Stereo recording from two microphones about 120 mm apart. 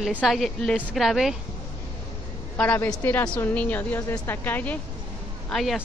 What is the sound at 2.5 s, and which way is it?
A woman's voice, 15° left (ahead or behind).